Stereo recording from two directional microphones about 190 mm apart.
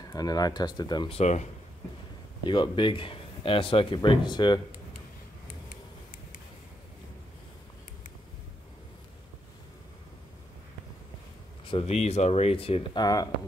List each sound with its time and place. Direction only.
0.0 s speech: 20° left (ahead or behind); by 1.5 s 35° left (ahead or behind)
2.4 s speech: 25° left (ahead or behind)
11.7 s speech: 35° left (ahead or behind)